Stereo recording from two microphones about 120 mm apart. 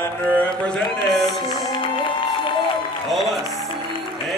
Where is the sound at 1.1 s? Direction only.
Centre (ahead or behind).